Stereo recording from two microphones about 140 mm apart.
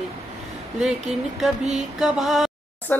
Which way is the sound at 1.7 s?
Centre (ahead or behind).